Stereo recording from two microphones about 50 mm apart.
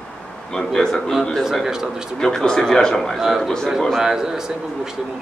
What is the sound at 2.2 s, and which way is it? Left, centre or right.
Speech, centre.